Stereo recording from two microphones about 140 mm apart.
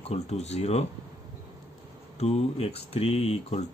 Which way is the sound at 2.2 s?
50° left (ahead or behind).